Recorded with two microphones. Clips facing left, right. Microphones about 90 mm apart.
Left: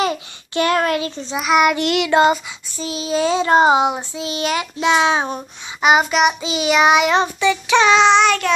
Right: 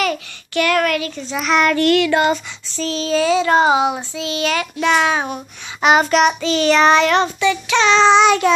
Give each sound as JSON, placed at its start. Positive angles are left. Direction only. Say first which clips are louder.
{"t": 0.0, "sound": "a sound", "louder": "even", "side_deg": 25}
{"t": 1.4, "sound": "child singing", "louder": "even", "side_deg": 10}
{"t": 3.2, "sound": "child singing", "louder": "even", "side_deg": 30}
{"t": 5.8, "sound": "child singing", "louder": "right 1 dB", "side_deg": 5}
{"t": 8.0, "sound": "child singing", "louder": "right 2 dB", "side_deg": -5}